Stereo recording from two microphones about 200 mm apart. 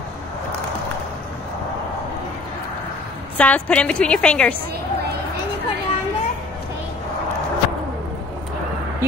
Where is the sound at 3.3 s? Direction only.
5° left (ahead or behind).